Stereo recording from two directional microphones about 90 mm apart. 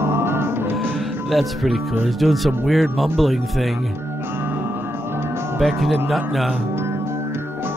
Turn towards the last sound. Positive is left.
turn(degrees=0)  # may be behind; listen again after turning